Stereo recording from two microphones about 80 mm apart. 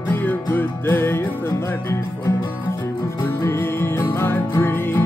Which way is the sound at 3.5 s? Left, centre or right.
Left.